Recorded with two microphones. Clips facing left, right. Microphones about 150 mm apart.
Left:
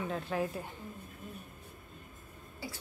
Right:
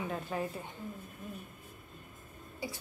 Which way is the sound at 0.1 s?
Centre (ahead or behind).